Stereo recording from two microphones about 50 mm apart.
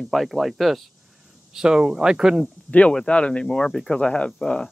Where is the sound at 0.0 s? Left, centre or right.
Centre.